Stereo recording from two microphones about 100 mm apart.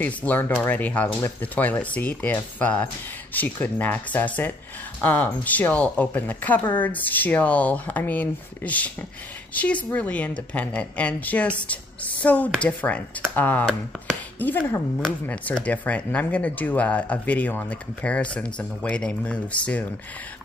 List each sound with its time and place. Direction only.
0.0 s speech: 15° left (ahead or behind)